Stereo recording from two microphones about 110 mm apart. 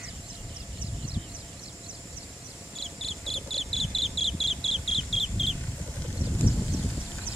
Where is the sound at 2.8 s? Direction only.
Centre (ahead or behind).